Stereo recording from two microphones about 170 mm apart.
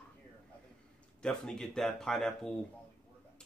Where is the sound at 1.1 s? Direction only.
5° left (ahead or behind).